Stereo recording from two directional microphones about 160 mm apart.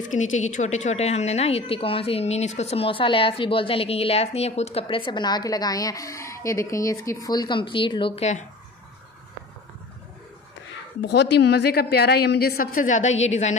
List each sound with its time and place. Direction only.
0.1 s a woman's voice: 50° left (ahead or behind); by 8.3 s 30° left (ahead or behind)
11.0 s a woman's voice: 90° left; by 13.6 s 45° left (ahead or behind)